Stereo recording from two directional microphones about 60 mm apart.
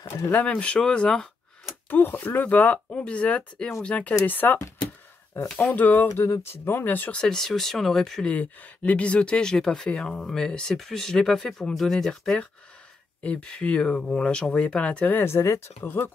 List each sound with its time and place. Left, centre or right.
0.0 s speech: left
1.9 s speech: left
5.6 s speech: left
6.4 s speech: left
7.1 s speech: centre
8.4 s speech: left; by 12.4 s centre
13.2 s speech: centre
15.1 s speech: left